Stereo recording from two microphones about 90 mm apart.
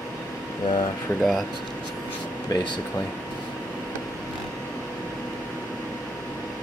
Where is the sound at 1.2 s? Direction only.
Centre (ahead or behind).